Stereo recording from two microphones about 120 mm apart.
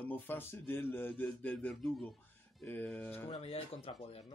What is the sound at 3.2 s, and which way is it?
Speech, 55° left (ahead or behind).